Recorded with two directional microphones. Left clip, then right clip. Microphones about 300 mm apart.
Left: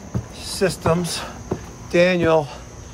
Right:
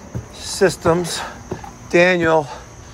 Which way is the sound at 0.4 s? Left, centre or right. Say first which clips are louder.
Right 5 dB; centre.